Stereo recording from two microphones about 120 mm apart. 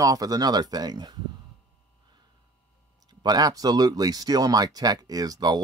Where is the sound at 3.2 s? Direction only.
35° right (ahead or behind).